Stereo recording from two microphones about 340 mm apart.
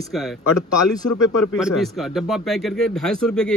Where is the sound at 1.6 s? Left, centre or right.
Centre.